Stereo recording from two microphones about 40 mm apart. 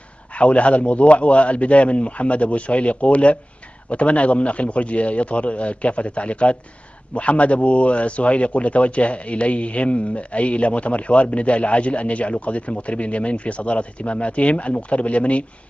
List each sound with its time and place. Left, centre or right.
0.3 s speech: left